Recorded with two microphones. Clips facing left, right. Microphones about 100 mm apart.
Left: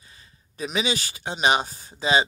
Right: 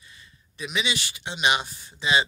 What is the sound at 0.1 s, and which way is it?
Speech, 35° left (ahead or behind).